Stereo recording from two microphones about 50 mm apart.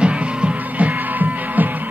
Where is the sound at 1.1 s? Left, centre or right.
Right.